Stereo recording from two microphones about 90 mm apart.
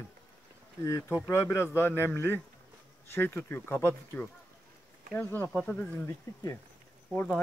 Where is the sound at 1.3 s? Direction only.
30° left (ahead or behind).